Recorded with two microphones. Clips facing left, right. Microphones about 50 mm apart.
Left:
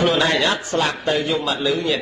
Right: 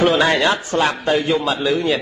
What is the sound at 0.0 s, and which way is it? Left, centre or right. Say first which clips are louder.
A man's voice: right 3 dB; centre.